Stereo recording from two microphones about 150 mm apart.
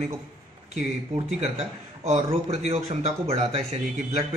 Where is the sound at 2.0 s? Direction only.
45° right (ahead or behind).